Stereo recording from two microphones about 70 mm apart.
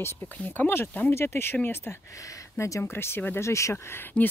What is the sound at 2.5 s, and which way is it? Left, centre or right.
Speech, left.